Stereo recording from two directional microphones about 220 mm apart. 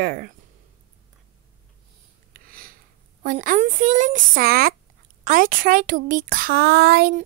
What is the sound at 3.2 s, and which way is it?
Speech, 35° right (ahead or behind).